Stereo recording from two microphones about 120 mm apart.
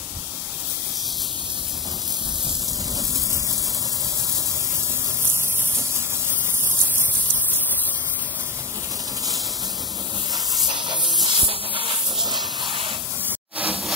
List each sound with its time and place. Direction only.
10.3 s hiss: 30° right (ahead or behind)
12.6 s spray: 45° right (ahead or behind)
13.6 s a sound: 10° right (ahead or behind)